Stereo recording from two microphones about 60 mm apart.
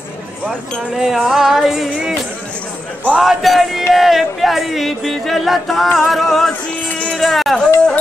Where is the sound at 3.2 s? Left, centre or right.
Centre.